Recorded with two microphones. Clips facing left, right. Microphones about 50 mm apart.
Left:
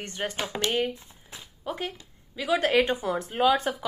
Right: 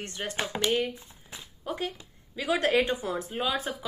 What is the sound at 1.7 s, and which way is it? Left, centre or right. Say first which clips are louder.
Speech: even; centre.